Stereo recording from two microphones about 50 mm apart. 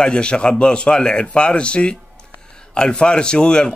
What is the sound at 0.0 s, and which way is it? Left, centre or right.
A man's voice, centre.